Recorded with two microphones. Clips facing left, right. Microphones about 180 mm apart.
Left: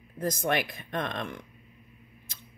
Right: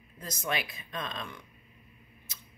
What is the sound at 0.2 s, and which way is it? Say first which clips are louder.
Speech: left 7 dB; 55° left (ahead or behind).